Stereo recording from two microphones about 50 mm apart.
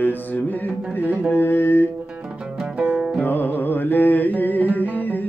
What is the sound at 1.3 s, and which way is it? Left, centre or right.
Mantra, left.